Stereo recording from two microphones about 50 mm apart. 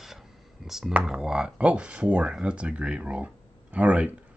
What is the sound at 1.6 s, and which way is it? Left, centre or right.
Speech, right.